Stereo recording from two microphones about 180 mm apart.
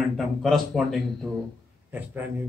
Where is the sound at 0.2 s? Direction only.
Centre (ahead or behind).